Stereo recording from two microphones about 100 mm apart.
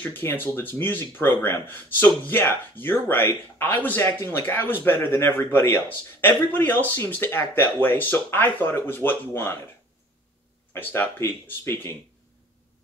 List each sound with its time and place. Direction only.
0.0 s speech: 20° left (ahead or behind)
10.7 s speech: 20° left (ahead or behind)